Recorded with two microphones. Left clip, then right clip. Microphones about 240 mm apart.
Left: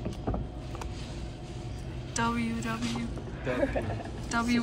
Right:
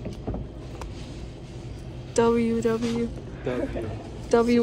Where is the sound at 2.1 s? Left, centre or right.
Centre.